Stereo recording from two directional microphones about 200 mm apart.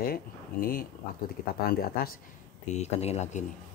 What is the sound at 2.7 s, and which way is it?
Speech, 35° left (ahead or behind).